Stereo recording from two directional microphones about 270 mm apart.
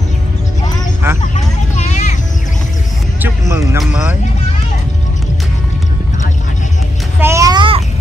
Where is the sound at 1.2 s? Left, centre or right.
Left.